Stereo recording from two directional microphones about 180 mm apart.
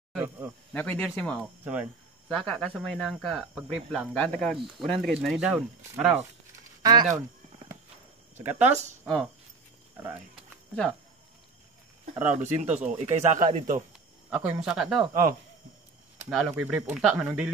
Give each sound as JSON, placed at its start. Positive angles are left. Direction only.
{"t": 0.1, "sound": "speech", "side_deg": -10}
{"t": 0.7, "sound": "speech", "side_deg": 5}
{"t": 1.4, "sound": "speech", "side_deg": -10}
{"t": 2.2, "sound": "speech", "side_deg": 5}
{"t": 6.8, "sound": "speech", "side_deg": -20}
{"t": 8.5, "sound": "speech", "side_deg": -40}
{"t": 9.0, "sound": "speech", "side_deg": 0}
{"t": 12.2, "sound": "speech", "side_deg": -10}
{"t": 12.6, "sound": "speech", "side_deg": -40}
{"t": 14.3, "sound": "speech", "side_deg": -5}
{"t": 16.2, "sound": "speech", "side_deg": -5}